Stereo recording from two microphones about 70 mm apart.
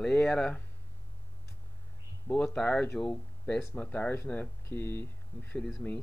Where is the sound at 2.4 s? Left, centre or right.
Centre.